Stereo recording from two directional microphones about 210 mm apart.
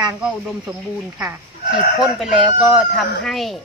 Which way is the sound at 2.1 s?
5° right (ahead or behind).